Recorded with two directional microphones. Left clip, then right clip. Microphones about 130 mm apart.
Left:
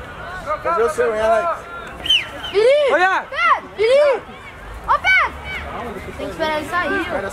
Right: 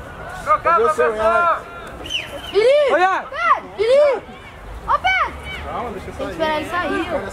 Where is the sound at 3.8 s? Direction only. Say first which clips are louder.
Even; 5° right (ahead or behind).